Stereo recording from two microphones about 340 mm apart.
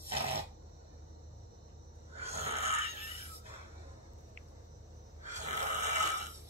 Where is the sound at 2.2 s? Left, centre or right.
Centre.